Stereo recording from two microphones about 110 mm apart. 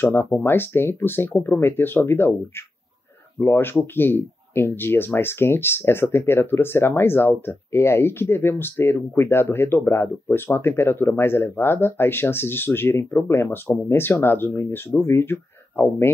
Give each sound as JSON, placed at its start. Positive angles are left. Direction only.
{"t": 0.0, "sound": "speech", "side_deg": 20}